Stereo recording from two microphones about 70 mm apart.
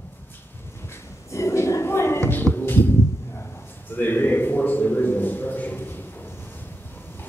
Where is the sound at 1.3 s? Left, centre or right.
Left.